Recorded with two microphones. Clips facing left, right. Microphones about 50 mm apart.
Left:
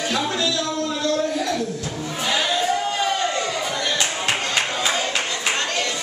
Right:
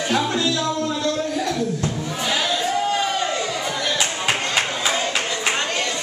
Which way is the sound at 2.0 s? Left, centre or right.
Centre.